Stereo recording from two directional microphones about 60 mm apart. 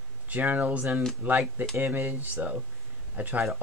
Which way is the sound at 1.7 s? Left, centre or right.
Right.